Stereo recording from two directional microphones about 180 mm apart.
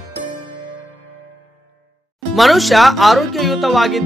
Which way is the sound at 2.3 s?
Centre (ahead or behind).